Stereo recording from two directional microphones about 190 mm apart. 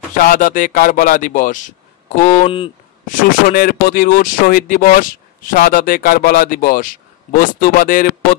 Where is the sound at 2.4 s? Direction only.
25° left (ahead or behind).